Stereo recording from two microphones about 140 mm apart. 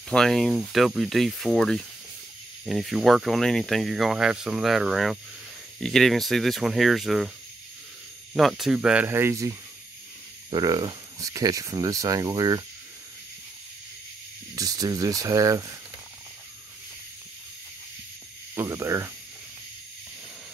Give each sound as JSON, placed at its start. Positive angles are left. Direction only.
{"t": 0.1, "sound": "speech", "side_deg": 5}
{"t": 8.4, "sound": "speech", "side_deg": 0}
{"t": 14.5, "sound": "speech", "side_deg": -25}
{"t": 18.5, "sound": "speech", "side_deg": -20}